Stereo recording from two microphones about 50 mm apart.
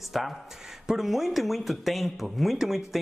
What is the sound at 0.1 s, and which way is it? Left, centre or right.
Speech, centre.